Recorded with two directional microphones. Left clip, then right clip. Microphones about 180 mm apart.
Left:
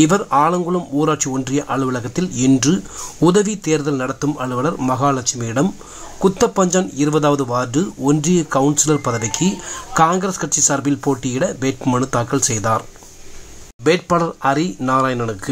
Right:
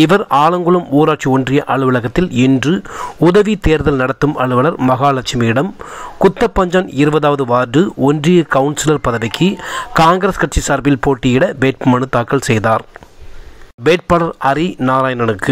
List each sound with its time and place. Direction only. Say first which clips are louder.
0.0 s speech: right 4 dB; 30° right (ahead or behind)
10.3 s speech: right 3 dB; 15° right (ahead or behind)
13.8 s speech: right 4 dB; 25° right (ahead or behind)